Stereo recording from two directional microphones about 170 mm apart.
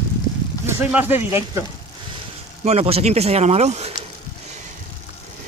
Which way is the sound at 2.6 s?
40° right (ahead or behind).